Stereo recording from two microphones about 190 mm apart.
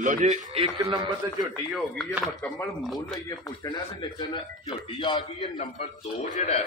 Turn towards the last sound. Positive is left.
turn(degrees=40)  # may be behind; listen again after turning